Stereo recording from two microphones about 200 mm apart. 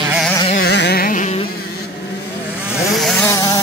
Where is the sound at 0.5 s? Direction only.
55° left (ahead or behind).